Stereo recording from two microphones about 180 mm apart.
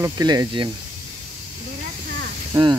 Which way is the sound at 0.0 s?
20° right (ahead or behind).